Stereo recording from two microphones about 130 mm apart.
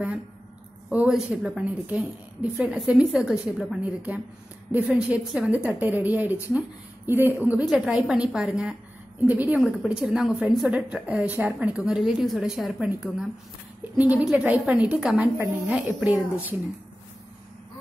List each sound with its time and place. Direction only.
0.8 s a woman's voice: 5° right (ahead or behind)